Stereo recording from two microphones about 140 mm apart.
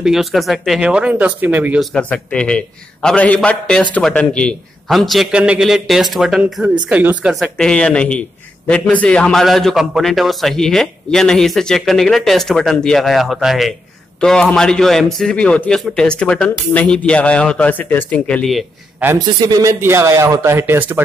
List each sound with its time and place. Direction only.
0.0 s a man's voice: centre (ahead or behind)
1.8 s a man's voice: 5° left (ahead or behind); by 7.3 s 10° right (ahead or behind)
7.5 s a man's voice: 5° left (ahead or behind)
19.1 s speech: 25° right (ahead or behind)